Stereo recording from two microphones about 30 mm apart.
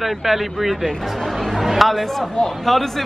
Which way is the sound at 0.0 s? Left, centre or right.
Centre.